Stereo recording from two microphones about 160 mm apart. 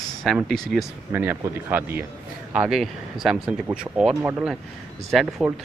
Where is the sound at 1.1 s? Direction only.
15° right (ahead or behind).